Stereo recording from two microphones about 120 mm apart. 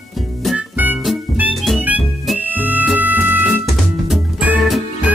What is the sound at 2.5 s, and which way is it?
Music, 10° right (ahead or behind).